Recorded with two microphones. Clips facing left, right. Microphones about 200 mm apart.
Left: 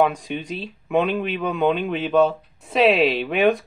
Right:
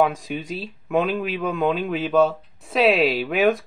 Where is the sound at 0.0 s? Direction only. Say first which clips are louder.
Left 1 dB; centre (ahead or behind).